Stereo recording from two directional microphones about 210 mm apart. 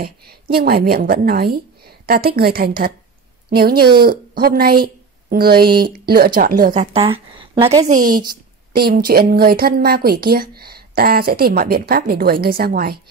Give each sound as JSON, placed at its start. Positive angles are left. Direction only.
{"t": 0.0, "sound": "a woman's voice", "side_deg": -50}
{"t": 3.7, "sound": "speech", "side_deg": -20}
{"t": 4.0, "sound": "a woman's voice", "side_deg": -45}
{"t": 7.9, "sound": "a woman's voice", "side_deg": -40}